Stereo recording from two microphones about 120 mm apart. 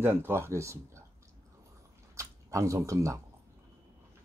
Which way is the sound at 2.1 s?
25° right (ahead or behind).